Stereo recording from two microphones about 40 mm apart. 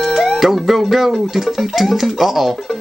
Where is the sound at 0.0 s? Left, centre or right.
Centre.